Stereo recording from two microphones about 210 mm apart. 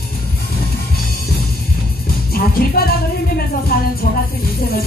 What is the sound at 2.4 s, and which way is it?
Music, 45° left (ahead or behind).